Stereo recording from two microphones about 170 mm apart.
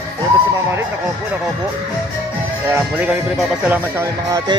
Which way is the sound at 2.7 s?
5° right (ahead or behind).